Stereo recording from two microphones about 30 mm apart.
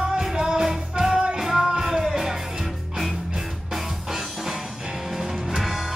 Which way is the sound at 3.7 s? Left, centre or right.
Centre.